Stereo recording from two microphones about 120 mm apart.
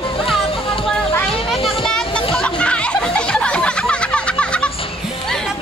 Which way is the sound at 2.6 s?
10° left (ahead or behind).